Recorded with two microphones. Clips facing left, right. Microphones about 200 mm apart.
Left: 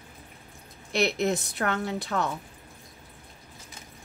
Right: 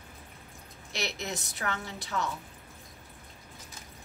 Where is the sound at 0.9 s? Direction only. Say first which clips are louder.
Left 11 dB; 60° left (ahead or behind).